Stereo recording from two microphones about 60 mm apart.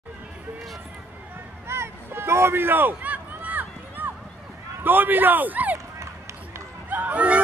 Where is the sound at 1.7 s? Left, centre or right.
Right.